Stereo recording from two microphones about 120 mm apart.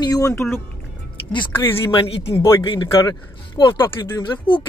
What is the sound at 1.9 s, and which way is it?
Speech, 50° left (ahead or behind).